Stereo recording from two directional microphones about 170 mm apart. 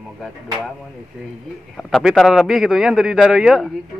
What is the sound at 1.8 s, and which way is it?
A man's voice, centre (ahead or behind).